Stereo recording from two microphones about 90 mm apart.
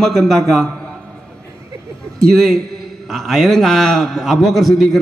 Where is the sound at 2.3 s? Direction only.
5° left (ahead or behind).